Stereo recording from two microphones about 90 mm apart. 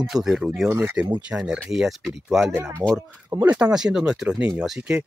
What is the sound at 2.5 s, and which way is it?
Speech, 25° right (ahead or behind).